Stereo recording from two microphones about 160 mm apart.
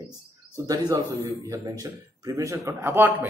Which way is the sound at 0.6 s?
25° right (ahead or behind).